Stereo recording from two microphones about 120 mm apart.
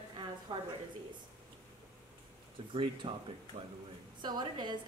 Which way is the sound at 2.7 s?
45° right (ahead or behind).